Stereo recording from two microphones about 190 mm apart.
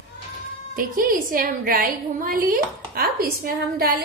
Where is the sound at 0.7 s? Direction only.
45° right (ahead or behind).